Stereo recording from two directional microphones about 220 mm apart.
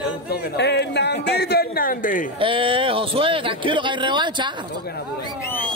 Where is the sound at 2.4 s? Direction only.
25° right (ahead or behind).